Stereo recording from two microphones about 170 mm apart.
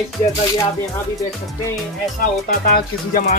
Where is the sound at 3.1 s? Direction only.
50° left (ahead or behind).